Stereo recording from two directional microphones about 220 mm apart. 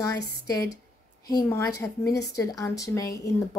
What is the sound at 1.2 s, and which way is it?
A woman's voice, 15° left (ahead or behind).